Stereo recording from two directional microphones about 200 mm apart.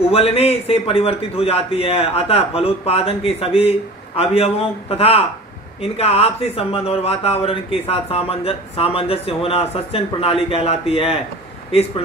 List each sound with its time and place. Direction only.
0.1 s speech: 30° left (ahead or behind)